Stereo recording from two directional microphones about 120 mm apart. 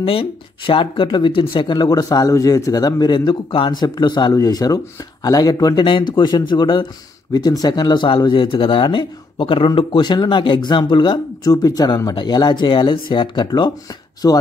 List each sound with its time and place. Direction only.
0.0 s speech: 50° left (ahead or behind); by 14.4 s 30° left (ahead or behind)